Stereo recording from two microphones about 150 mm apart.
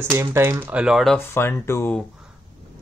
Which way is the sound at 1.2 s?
15° left (ahead or behind).